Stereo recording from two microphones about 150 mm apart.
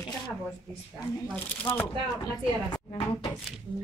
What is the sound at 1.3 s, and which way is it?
Speech, 10° left (ahead or behind).